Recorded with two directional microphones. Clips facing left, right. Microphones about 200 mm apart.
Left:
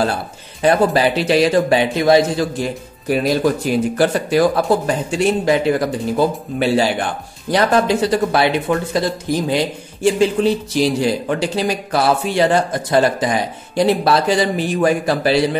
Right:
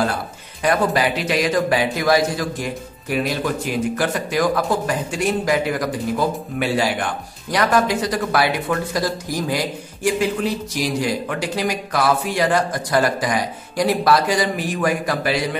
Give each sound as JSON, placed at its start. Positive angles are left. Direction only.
{"t": 0.6, "sound": "a man's voice", "side_deg": 30}